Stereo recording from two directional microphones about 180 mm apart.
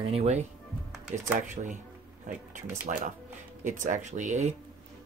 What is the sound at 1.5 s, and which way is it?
Speech, 45° right (ahead or behind).